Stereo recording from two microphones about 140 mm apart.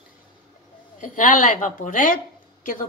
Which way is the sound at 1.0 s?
70° left (ahead or behind).